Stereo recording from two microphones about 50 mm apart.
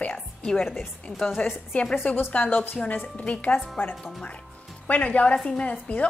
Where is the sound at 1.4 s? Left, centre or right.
Left.